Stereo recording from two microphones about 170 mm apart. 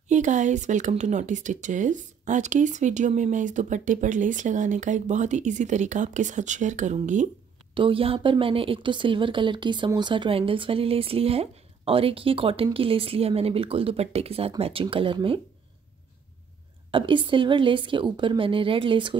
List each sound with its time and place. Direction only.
0.1 s speech: 45° right (ahead or behind)
7.7 s speech: 30° right (ahead or behind)
16.9 s a woman's voice: 30° right (ahead or behind)